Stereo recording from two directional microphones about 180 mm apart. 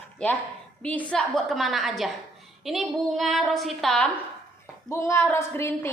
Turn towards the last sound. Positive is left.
turn(degrees=15)  # may be behind; listen again after turning